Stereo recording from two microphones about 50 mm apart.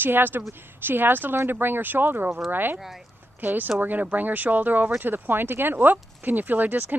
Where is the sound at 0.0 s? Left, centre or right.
Right.